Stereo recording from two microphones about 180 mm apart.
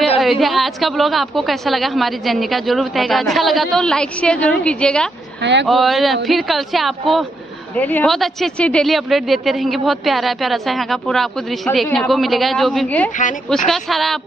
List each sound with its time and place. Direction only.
0.2 s speech: centre (ahead or behind)
5.4 s speech: 75° right (ahead or behind)
5.7 s speech: centre (ahead or behind)